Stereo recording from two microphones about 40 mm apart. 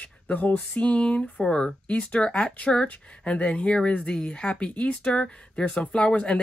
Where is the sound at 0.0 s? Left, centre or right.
Left.